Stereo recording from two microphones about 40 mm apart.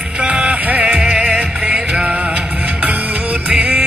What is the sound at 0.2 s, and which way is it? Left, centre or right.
Music, right.